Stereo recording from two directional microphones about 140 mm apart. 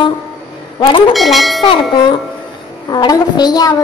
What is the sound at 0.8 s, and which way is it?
Speech, 35° left (ahead or behind).